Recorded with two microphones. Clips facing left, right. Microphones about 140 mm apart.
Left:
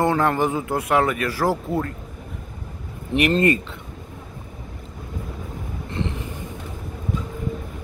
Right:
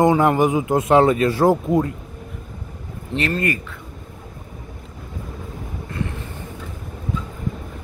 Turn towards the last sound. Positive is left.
turn(degrees=25)  # may be behind; listen again after turning